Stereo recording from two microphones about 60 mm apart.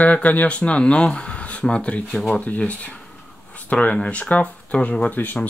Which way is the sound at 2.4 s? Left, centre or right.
Left.